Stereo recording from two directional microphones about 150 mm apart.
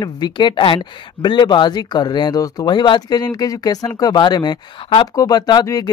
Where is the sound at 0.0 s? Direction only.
30° left (ahead or behind).